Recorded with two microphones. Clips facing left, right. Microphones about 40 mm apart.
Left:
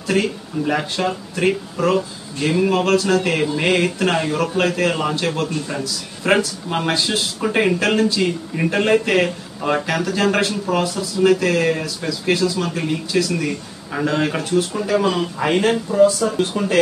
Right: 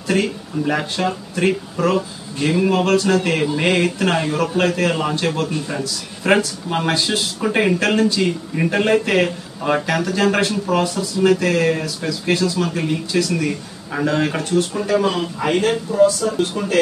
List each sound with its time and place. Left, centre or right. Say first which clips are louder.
0.1 s speech: even; centre